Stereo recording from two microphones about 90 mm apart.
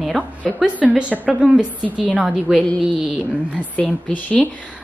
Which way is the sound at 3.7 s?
20° left (ahead or behind).